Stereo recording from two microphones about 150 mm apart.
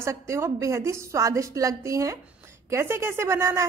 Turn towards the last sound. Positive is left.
turn(degrees=-20)  # may be behind; listen again after turning